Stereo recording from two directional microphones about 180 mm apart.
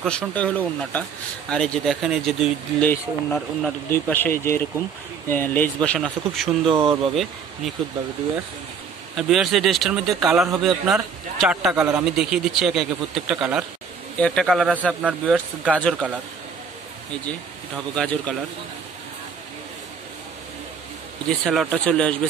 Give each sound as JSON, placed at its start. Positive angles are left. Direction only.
{"t": 0.0, "sound": "a man's voice", "side_deg": 5}
{"t": 6.7, "sound": "speech", "side_deg": -30}
{"t": 9.1, "sound": "a man's voice", "side_deg": 0}
{"t": 17.9, "sound": "a man's voice", "side_deg": 5}
{"t": 21.5, "sound": "a man's voice", "side_deg": 5}